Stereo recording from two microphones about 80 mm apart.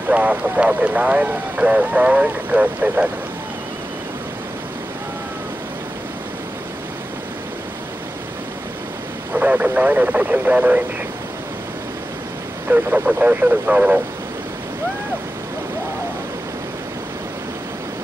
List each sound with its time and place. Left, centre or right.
0.1 s speech: centre
9.3 s speech: centre
12.6 s speech: right